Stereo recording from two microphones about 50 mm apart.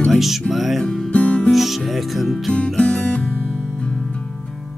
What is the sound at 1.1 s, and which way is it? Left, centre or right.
Music, left.